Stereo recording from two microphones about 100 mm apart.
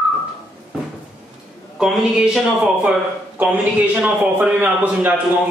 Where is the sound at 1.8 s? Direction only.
5° right (ahead or behind).